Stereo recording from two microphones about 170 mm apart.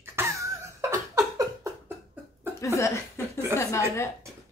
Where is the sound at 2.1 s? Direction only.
10° right (ahead or behind).